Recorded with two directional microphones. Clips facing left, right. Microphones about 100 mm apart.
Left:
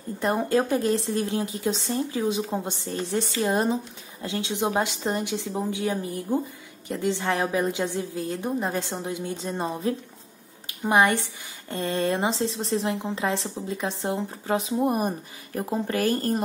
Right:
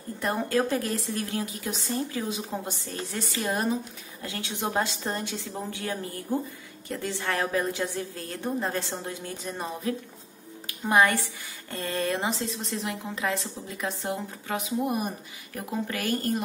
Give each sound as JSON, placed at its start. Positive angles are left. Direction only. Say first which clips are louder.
{"t": 0.2, "sound": "a woman's voice", "louder": "left 3 dB", "side_deg": 20}